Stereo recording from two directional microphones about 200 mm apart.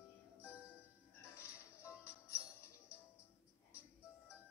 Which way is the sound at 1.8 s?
15° left (ahead or behind).